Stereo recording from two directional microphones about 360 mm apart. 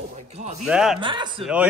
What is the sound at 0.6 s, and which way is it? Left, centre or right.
Speech, centre.